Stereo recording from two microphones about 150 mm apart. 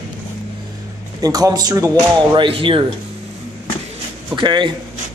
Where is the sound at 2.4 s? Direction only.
35° right (ahead or behind).